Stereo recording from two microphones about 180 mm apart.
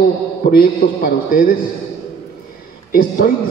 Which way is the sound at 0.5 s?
55° left (ahead or behind).